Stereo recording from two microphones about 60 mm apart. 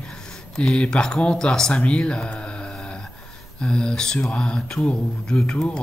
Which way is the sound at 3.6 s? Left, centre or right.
Centre.